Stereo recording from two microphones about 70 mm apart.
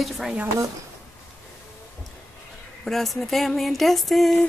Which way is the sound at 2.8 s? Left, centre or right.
Centre.